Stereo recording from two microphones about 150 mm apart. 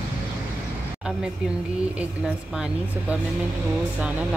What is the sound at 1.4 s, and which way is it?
A woman's voice, 5° right (ahead or behind).